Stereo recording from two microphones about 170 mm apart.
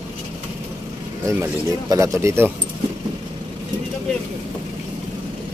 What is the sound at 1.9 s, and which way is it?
Speech, 15° right (ahead or behind).